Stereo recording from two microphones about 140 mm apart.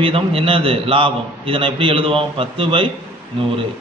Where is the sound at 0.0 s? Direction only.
40° right (ahead or behind).